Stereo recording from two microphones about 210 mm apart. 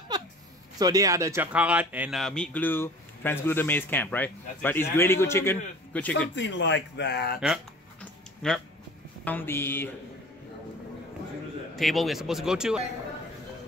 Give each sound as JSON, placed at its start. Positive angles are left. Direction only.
{"t": 0.7, "sound": "speech", "side_deg": -15}
{"t": 6.3, "sound": "speech", "side_deg": 60}
{"t": 7.3, "sound": "speech", "side_deg": -5}
{"t": 11.7, "sound": "speech", "side_deg": 0}